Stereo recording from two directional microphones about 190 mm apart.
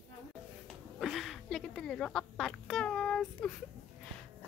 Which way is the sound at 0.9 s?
Centre (ahead or behind).